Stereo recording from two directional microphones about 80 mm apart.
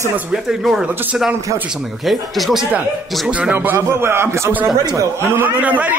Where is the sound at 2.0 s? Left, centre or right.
Centre.